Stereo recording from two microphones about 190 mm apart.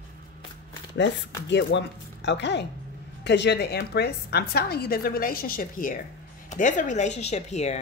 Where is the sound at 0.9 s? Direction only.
70° left (ahead or behind).